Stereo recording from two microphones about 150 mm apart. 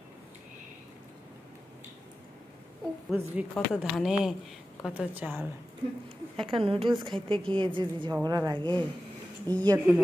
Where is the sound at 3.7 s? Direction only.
5° right (ahead or behind).